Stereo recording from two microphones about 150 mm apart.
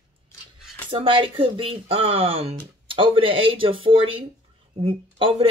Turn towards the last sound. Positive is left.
turn(degrees=-35)  # may be behind; listen again after turning